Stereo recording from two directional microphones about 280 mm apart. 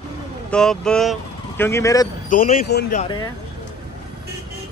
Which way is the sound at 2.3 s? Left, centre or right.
Left.